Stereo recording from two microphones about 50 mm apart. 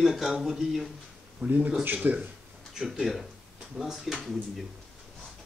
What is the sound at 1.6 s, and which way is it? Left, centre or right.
Speech, centre.